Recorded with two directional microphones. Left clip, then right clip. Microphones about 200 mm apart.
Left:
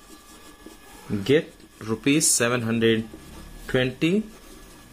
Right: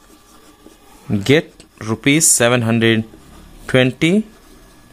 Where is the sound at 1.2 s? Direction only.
55° right (ahead or behind).